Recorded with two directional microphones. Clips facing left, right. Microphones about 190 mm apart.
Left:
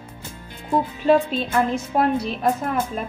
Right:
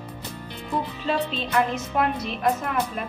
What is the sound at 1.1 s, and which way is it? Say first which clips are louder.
Speech: left 10 dB; 50° left (ahead or behind).